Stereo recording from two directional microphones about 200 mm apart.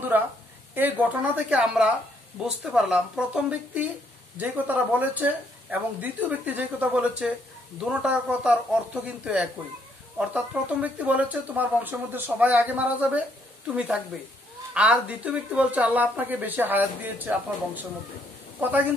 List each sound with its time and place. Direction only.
0.1 s speech: 10° right (ahead or behind)
18.6 s speech: 10° right (ahead or behind)